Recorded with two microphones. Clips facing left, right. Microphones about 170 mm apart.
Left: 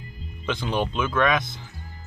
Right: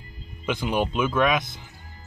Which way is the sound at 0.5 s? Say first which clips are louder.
Right 1 dB; 10° right (ahead or behind).